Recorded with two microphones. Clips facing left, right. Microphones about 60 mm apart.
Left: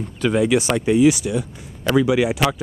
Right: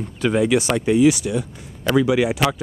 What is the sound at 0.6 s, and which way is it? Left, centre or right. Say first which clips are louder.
Speech: even; centre.